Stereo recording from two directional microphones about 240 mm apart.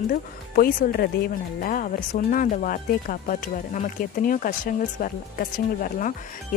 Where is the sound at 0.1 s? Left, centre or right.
Left.